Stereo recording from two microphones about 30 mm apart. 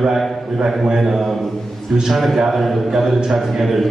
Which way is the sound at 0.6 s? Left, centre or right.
Centre.